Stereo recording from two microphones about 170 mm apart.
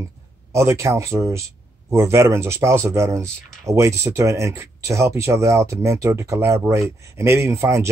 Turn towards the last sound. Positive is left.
turn(degrees=-15)  # may be behind; listen again after turning